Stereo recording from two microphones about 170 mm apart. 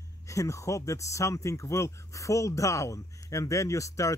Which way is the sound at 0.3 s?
20° left (ahead or behind).